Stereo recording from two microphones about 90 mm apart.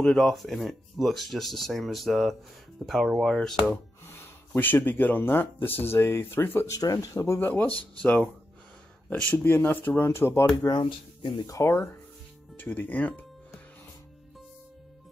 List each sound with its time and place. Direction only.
0.0 s speech: 5° left (ahead or behind)
3.7 s speech: 25° left (ahead or behind)
6.8 s speech: 40° left (ahead or behind)
7.3 s speech: 20° left (ahead or behind)
10.7 s speech: 60° left (ahead or behind)
11.4 s speech: 35° left (ahead or behind)
12.5 s speech: 20° left (ahead or behind)